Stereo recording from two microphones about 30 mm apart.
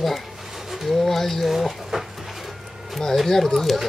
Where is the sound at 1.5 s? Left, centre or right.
Centre.